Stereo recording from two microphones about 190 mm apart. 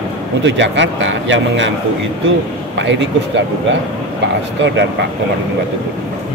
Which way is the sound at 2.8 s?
70° right (ahead or behind).